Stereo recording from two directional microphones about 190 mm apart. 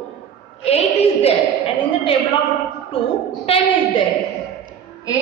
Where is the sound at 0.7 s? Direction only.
35° left (ahead or behind).